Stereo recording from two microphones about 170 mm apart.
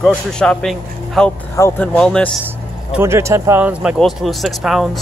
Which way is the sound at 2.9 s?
15° right (ahead or behind).